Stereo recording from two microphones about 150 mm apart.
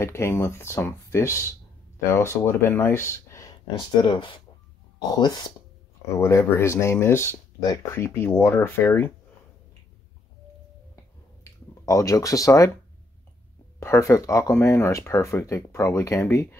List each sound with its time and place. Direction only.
0.0 s speech: 20° left (ahead or behind)
6.1 s speech: 20° left (ahead or behind)
11.8 s speech: 20° left (ahead or behind)
13.7 s speech: 20° left (ahead or behind)